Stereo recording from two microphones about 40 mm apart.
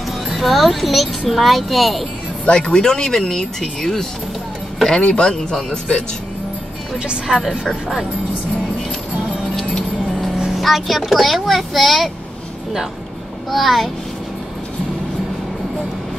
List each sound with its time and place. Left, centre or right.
0.3 s speech: centre
2.4 s speech: left
7.1 s speech: right
10.6 s speech: centre
13.5 s speech: centre